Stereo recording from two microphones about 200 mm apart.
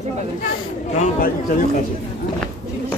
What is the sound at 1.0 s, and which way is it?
Chatter, 45° left (ahead or behind).